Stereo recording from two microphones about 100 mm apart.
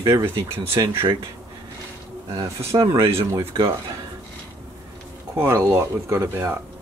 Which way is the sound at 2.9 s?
30° right (ahead or behind).